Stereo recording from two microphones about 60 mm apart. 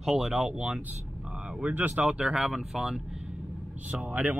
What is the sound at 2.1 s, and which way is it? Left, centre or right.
Speech, centre.